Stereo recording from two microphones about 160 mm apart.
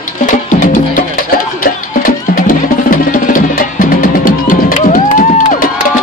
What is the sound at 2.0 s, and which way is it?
Music, 60° left (ahead or behind).